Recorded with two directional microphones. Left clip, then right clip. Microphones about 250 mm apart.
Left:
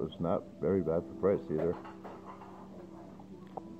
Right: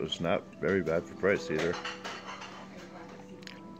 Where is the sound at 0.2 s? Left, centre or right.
Centre.